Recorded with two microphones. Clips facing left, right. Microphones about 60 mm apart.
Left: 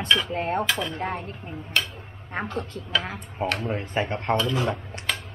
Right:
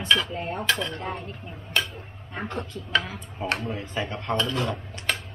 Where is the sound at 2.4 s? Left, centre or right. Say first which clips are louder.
Left 3 dB; left.